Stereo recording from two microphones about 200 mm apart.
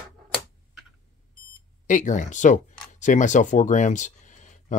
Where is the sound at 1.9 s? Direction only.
40° left (ahead or behind).